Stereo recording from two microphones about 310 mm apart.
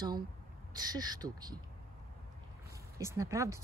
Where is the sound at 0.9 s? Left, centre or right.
Centre.